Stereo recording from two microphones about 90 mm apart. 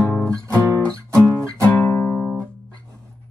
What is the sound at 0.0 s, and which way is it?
Music, 15° left (ahead or behind).